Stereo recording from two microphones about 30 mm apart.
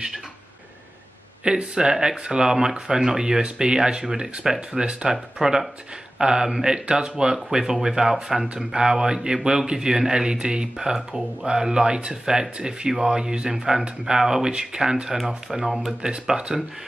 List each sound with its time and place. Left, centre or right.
1.4 s speech: right
10.9 s speech: centre
11.4 s speech: right
15.1 s speech: centre
16.3 s speech: right